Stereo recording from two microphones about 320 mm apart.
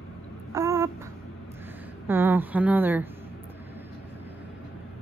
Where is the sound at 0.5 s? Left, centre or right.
Centre.